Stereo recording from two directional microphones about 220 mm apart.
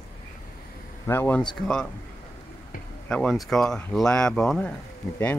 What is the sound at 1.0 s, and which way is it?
Speech, 10° left (ahead or behind).